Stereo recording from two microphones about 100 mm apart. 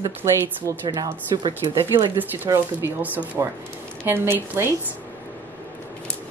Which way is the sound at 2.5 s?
40° right (ahead or behind).